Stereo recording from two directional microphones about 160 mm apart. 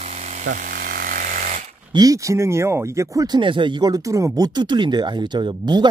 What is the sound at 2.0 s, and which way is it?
Speech, 20° right (ahead or behind).